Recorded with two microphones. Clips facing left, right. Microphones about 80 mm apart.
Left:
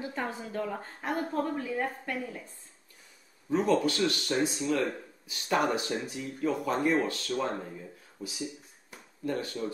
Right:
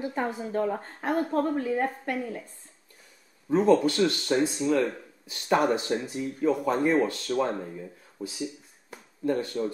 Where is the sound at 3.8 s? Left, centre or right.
Right.